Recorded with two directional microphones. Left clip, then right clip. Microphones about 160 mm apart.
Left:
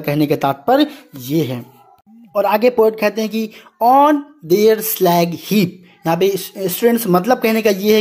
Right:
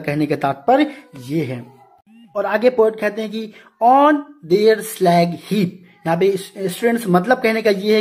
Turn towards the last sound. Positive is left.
turn(degrees=30)  # may be behind; listen again after turning